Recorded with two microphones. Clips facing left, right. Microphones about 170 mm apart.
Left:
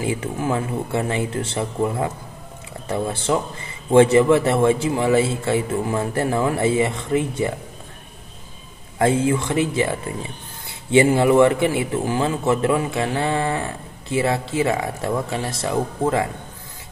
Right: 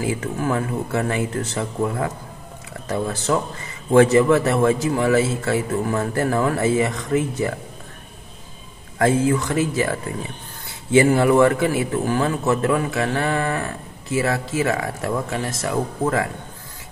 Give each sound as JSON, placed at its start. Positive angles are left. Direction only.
{"t": 0.0, "sound": "a man's voice", "side_deg": 20}
{"t": 8.9, "sound": "a man's voice", "side_deg": 20}